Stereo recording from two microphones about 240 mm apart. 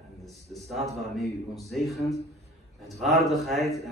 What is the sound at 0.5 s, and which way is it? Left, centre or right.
A man's voice, centre.